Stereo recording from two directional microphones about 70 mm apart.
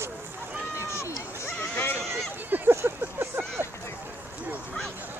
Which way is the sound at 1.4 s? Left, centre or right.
Left.